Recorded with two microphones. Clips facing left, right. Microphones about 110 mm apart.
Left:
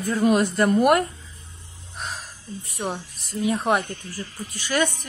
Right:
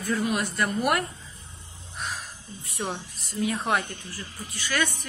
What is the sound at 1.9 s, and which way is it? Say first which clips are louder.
Crow: left 1 dB; 30° left (ahead or behind).